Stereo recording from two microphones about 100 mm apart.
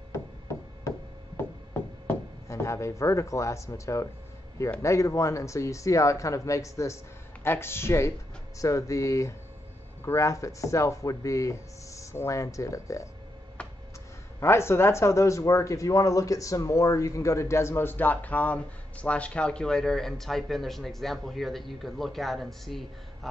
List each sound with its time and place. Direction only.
0.8 s knock: 25° left (ahead or behind)
2.4 s speech: 30° left (ahead or behind)
14.4 s speech: 25° left (ahead or behind); by 22.8 s centre (ahead or behind)